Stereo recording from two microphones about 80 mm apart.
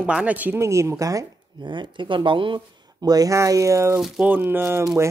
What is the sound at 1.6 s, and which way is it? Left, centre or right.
Speech, right.